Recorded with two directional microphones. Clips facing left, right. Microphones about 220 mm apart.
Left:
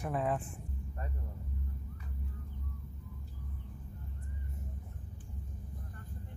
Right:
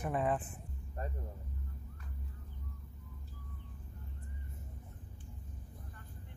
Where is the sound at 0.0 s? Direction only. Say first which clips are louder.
Even; centre (ahead or behind).